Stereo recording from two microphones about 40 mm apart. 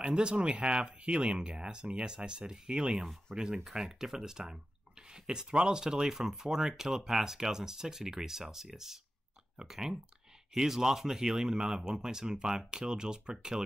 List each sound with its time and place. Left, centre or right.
0.0 s speech: right